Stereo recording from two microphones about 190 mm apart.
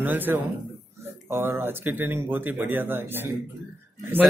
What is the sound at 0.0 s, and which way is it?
Speech, 10° right (ahead or behind).